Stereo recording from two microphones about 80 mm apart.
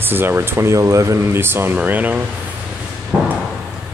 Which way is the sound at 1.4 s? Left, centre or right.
Right.